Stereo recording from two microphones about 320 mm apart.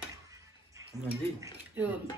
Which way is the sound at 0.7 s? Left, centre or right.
Centre.